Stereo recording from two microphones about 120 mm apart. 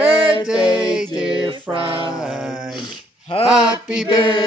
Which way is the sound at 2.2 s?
5° right (ahead or behind).